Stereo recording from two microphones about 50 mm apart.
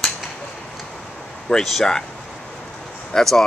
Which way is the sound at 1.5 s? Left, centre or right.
Centre.